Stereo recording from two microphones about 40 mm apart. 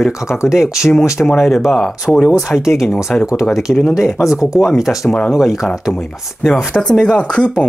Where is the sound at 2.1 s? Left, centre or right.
Centre.